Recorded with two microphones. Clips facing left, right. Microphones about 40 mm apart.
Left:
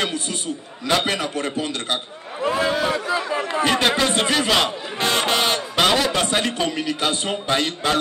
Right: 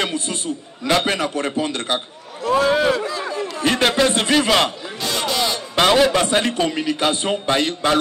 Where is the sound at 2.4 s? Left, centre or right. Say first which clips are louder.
Right 4 dB; left.